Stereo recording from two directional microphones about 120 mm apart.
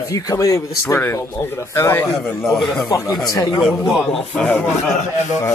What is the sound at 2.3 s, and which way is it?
A man's voice, 5° left (ahead or behind).